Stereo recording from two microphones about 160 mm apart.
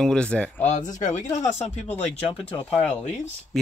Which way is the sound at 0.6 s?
50° left (ahead or behind).